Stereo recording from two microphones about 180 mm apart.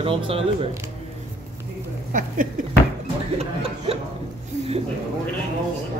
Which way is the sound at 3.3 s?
35° right (ahead or behind).